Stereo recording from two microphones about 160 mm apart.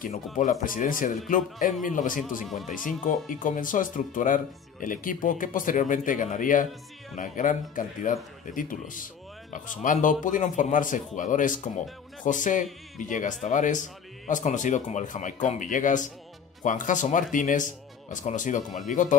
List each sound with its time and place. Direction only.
0.1 s speech: 50° left (ahead or behind)
2.4 s speech: centre (ahead or behind)
3.0 s speech: 55° left (ahead or behind)